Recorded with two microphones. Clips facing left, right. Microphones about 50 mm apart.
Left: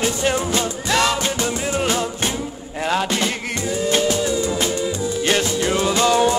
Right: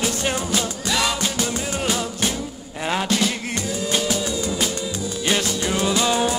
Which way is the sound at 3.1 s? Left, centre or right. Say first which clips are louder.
Even; centre.